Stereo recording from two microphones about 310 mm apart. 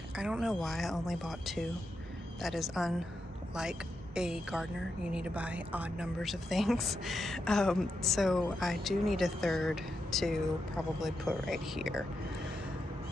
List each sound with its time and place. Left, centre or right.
0.1 s a woman's voice: centre